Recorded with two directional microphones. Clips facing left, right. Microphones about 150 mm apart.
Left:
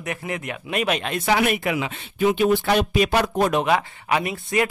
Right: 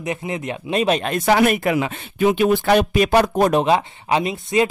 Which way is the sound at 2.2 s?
60° right (ahead or behind).